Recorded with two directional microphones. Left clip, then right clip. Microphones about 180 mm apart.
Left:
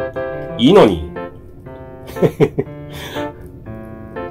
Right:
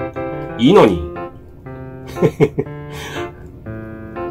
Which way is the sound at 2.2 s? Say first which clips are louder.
Even; 5° right (ahead or behind).